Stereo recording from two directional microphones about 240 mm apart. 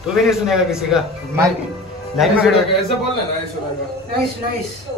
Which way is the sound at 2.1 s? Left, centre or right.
Centre.